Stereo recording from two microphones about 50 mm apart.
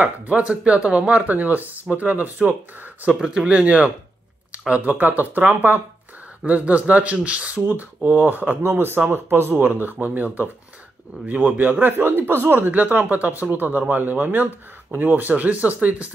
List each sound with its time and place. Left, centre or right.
0.0 s speech: right
3.2 s speech: centre